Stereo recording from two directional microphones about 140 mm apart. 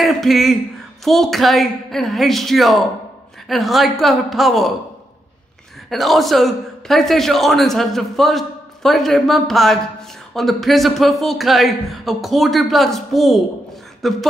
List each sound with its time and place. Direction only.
0.0 s a man's voice: centre (ahead or behind)
5.9 s a man's voice: centre (ahead or behind)